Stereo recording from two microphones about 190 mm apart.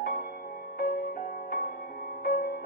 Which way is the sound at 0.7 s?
50° left (ahead or behind).